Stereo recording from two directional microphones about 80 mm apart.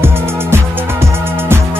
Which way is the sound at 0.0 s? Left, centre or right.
Right.